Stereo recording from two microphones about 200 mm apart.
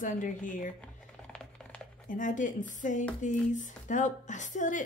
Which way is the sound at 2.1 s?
40° left (ahead or behind).